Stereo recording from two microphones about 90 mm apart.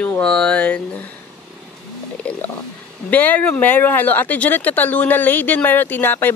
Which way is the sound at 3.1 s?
20° left (ahead or behind).